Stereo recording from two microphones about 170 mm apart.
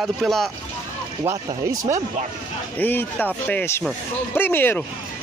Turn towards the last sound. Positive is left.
turn(degrees=10)  # may be behind; listen again after turning